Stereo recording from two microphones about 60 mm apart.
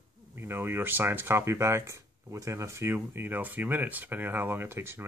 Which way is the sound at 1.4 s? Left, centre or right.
Right.